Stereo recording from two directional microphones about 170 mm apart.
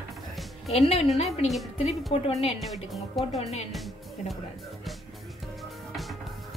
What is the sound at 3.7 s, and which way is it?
Music, centre (ahead or behind).